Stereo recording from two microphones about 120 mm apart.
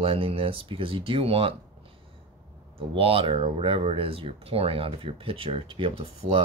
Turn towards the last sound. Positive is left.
turn(degrees=-50)  # may be behind; listen again after turning